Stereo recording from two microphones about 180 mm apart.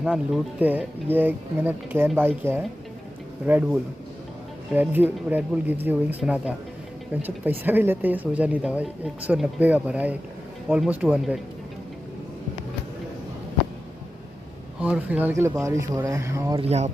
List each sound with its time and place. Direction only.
0.0 s speech: 5° right (ahead or behind)
14.8 s speech: 10° right (ahead or behind)
16.5 s speech: 35° right (ahead or behind)